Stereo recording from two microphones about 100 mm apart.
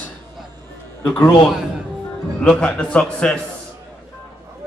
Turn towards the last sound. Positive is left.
turn(degrees=10)  # may be behind; listen again after turning